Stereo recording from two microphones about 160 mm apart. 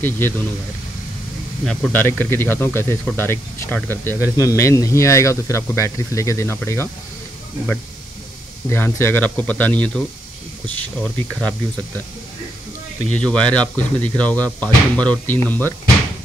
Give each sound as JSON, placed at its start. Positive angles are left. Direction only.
{"t": 0.0, "sound": "speech", "side_deg": 15}
{"t": 1.7, "sound": "speech", "side_deg": 5}
{"t": 8.6, "sound": "speech", "side_deg": 15}
{"t": 13.1, "sound": "speech", "side_deg": 5}